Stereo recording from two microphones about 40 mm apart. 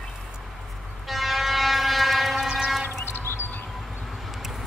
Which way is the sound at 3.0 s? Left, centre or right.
Left.